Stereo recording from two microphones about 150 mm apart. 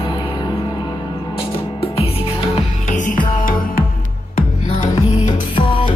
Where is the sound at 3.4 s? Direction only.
70° left (ahead or behind).